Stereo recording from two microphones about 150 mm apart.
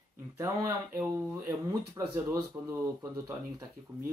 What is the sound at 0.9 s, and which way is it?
Speech, 15° right (ahead or behind).